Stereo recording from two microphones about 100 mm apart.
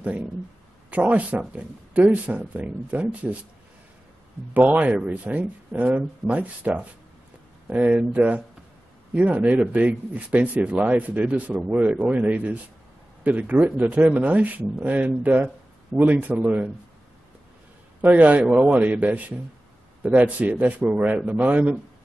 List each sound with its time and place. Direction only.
0.8 s speech: 15° right (ahead or behind)
4.6 s speech: 15° right (ahead or behind)
18.0 s speech: 15° right (ahead or behind)